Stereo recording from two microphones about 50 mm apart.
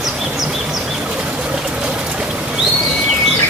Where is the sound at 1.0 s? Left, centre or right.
Right.